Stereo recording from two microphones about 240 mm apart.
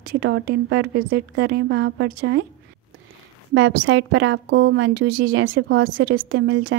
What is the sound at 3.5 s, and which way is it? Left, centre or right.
A woman's voice, right.